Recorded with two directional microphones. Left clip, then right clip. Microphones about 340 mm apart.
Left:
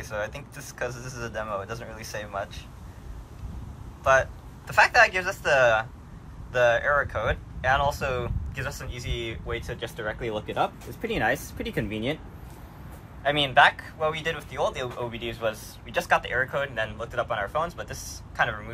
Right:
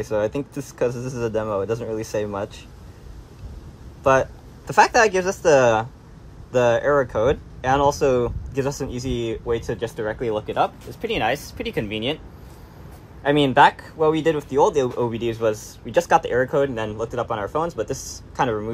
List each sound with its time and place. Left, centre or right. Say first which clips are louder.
0.0 s speech: right 10 dB; centre
4.0 s speech: right 3 dB; centre
13.2 s speech: right 4 dB; centre